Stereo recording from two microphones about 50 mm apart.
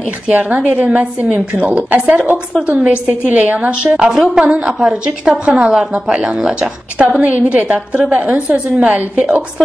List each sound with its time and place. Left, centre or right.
0.3 s a woman's voice: right
4.7 s a woman's voice: centre
5.7 s a woman's voice: centre
7.0 s a woman's voice: right